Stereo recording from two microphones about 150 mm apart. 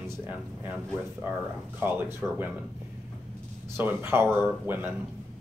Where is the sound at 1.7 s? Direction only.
15° right (ahead or behind).